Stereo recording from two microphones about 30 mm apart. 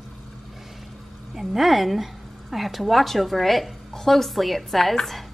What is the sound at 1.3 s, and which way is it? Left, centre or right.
A woman's voice, centre.